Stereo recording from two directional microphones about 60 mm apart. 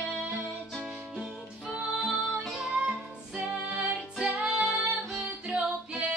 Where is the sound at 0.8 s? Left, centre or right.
Centre.